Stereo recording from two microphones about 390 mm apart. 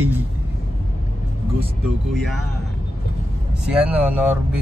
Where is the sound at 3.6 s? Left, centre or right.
Centre.